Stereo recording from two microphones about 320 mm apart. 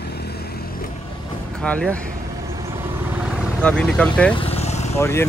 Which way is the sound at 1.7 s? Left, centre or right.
Centre.